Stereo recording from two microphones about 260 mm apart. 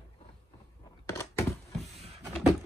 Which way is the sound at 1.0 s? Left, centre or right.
Centre.